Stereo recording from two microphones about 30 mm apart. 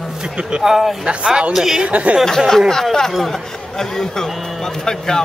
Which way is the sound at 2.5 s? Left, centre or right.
Centre.